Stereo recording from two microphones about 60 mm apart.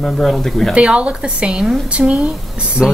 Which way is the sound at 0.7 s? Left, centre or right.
Centre.